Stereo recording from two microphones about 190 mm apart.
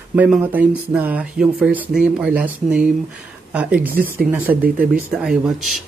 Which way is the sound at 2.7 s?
5° right (ahead or behind).